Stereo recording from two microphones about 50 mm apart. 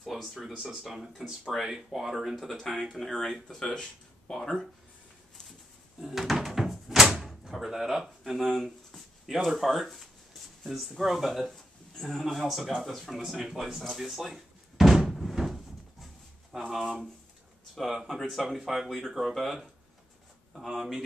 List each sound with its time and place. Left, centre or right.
0.2 s speech: centre
1.4 s speech: centre
1.7 s speech: centre
3.1 s speech: centre
5.9 s door: centre
7.1 s door: centre
7.4 s speech: centre
13.7 s door: centre
16.5 s speech: centre